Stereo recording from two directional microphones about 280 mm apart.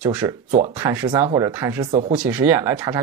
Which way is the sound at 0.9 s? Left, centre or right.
Centre.